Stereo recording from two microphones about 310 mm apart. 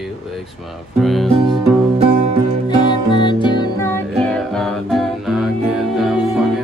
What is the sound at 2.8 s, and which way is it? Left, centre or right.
Music, centre.